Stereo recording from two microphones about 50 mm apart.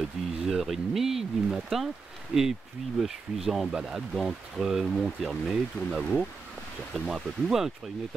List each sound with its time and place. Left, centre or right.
0.0 s speech: centre
5.3 s speech: centre